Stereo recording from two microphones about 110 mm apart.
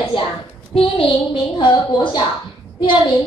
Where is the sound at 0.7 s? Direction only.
50° left (ahead or behind).